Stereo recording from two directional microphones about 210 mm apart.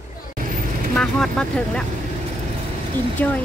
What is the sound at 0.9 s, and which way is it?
Vehicle, 5° left (ahead or behind).